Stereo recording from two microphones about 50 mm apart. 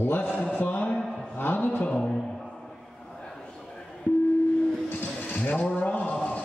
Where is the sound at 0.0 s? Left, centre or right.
Left.